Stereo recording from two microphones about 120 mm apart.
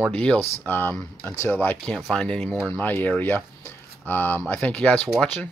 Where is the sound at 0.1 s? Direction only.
10° left (ahead or behind).